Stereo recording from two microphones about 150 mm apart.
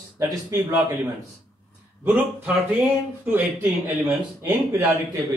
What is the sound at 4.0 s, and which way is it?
Speech, 20° right (ahead or behind).